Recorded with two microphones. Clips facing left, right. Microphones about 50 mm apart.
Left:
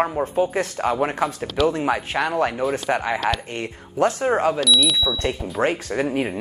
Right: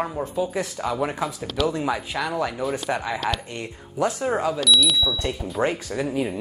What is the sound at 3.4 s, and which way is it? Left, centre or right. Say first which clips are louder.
Speech: left 4 dB; left.